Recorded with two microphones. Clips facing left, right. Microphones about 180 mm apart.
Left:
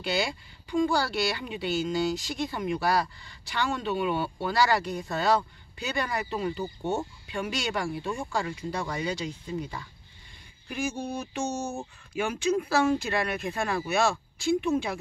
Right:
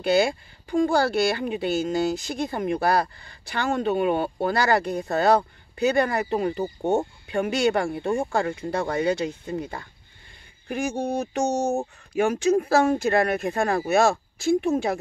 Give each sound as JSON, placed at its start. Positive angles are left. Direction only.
{"t": 0.0, "sound": "speech", "side_deg": -50}
{"t": 11.3, "sound": "speech", "side_deg": -45}